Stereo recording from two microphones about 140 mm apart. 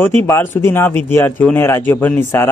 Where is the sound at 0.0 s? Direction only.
20° left (ahead or behind).